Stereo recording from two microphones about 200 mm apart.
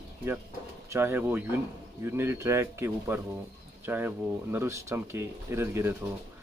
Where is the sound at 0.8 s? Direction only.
10° right (ahead or behind).